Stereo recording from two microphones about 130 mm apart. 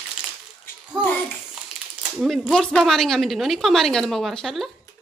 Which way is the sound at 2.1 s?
Centre (ahead or behind).